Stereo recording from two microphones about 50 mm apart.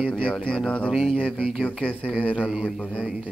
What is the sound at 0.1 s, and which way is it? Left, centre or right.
Speech, centre.